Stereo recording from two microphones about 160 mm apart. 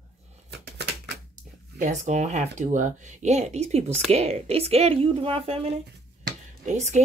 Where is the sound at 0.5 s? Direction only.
90° right.